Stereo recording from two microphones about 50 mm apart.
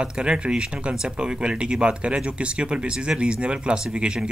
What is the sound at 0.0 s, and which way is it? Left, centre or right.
Speech, centre.